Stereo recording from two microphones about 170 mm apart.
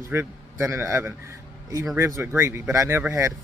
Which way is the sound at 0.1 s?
15° right (ahead or behind).